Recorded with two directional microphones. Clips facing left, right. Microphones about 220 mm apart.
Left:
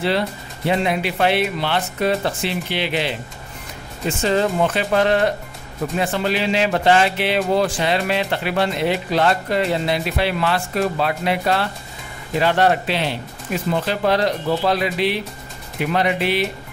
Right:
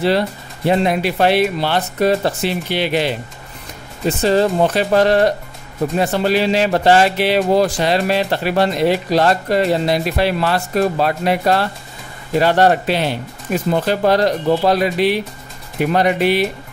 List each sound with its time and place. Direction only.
0.7 s speech: 40° right (ahead or behind)
4.2 s speech: 35° right (ahead or behind)